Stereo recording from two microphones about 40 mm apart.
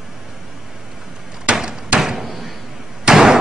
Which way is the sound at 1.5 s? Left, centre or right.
Centre.